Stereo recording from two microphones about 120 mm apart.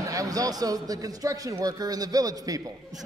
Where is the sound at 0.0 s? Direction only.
30° right (ahead or behind).